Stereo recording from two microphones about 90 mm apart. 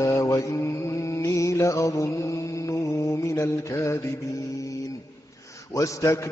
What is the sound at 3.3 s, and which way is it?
Mantra, 30° left (ahead or behind).